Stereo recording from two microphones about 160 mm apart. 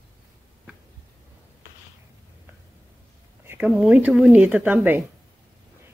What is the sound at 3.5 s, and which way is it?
Speech, 5° right (ahead or behind).